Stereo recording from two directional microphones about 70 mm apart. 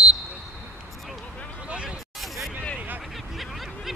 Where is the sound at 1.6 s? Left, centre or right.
Centre.